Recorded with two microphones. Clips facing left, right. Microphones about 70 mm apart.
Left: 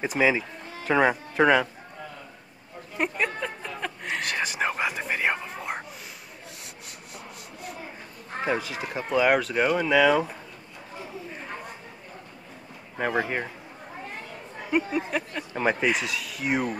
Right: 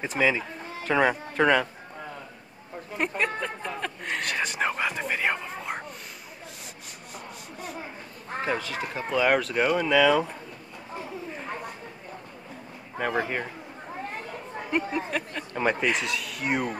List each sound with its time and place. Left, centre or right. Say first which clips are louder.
0.0 s speech: left 2 dB; centre
3.0 s whispering: even; centre
8.5 s speech: left 2 dB; centre
13.1 s speech: left 1 dB; centre
14.7 s speech: left 2 dB; centre